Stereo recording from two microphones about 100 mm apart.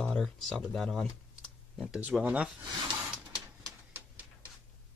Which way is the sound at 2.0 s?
15° right (ahead or behind).